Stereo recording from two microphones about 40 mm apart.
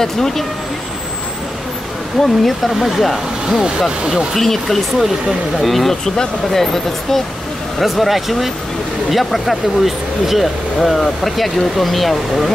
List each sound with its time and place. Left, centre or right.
0.0 s speech: centre
2.2 s speech: centre
3.4 s speech: centre
4.3 s speech: centre